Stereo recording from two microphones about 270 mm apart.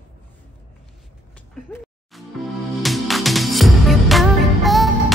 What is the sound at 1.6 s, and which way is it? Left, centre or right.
Music, centre.